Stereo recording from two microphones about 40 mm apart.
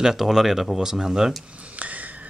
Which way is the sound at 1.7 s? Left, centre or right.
Right.